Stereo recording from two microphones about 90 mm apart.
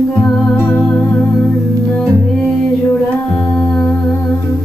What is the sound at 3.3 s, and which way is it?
Humming, 10° left (ahead or behind).